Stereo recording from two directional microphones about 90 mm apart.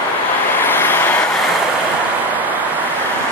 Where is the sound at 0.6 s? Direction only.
25° left (ahead or behind).